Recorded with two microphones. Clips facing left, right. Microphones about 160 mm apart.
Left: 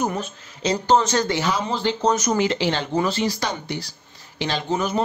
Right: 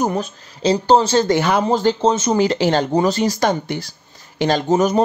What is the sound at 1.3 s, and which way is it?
Speech, 60° right (ahead or behind).